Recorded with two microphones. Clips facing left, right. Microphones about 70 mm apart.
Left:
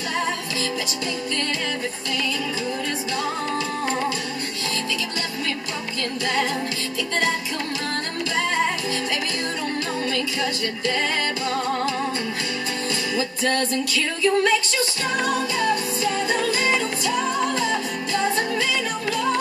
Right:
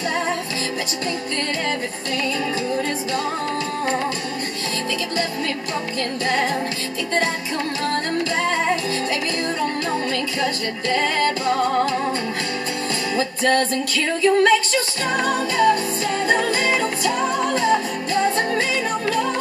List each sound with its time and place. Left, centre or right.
10.1 s music: right
13.1 s music: right